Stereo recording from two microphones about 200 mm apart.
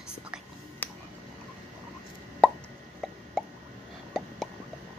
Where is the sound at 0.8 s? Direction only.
10° left (ahead or behind).